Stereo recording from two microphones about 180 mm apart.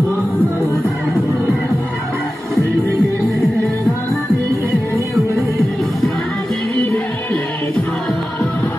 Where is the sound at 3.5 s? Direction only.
15° left (ahead or behind).